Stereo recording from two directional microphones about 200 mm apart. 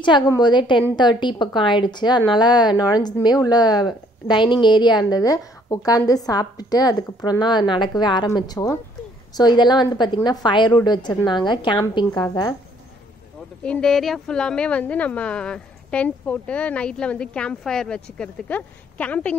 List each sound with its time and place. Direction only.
0.0 s a woman's voice: 20° left (ahead or behind)
13.7 s a woman's voice: 5° left (ahead or behind)